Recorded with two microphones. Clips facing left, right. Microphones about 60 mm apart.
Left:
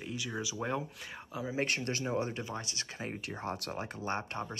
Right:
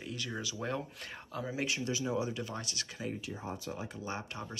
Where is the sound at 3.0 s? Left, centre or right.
Left.